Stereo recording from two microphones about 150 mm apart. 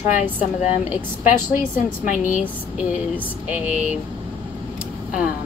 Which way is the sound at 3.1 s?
10° right (ahead or behind).